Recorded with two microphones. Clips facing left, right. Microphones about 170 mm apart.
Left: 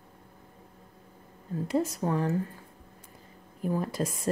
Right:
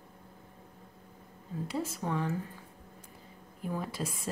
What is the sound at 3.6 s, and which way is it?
Speech, 45° left (ahead or behind).